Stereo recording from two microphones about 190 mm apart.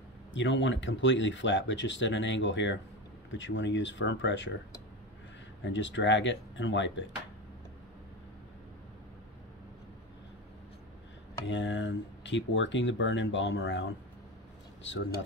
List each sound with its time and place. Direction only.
0.3 s speech: 75° left (ahead or behind)
5.7 s speech: 75° left (ahead or behind)
11.4 s speech: 75° left (ahead or behind)